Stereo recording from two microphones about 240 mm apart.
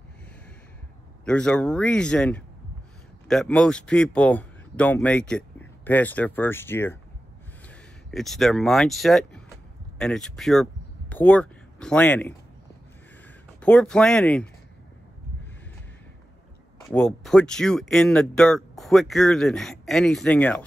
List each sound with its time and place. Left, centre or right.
1.2 s speech: centre
8.1 s speech: centre
13.6 s speech: centre
16.9 s speech: centre